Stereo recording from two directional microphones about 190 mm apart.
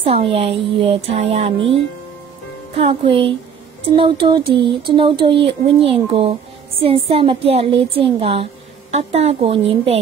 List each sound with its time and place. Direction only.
0.0 s speech: 30° right (ahead or behind)